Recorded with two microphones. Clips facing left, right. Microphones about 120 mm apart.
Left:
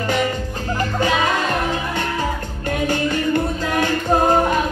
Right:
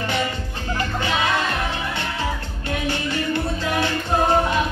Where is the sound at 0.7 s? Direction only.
40° left (ahead or behind).